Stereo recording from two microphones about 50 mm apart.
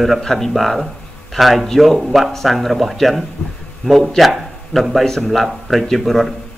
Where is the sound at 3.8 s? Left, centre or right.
Centre.